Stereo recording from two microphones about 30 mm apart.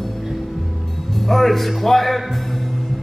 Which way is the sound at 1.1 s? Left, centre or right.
Centre.